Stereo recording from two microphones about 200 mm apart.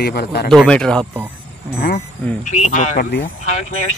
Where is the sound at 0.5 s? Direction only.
5° left (ahead or behind).